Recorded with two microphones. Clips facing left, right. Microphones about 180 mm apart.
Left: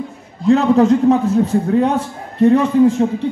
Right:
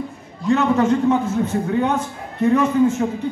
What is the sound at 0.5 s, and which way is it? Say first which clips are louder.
A man's voice: left 5 dB; 35° left (ahead or behind).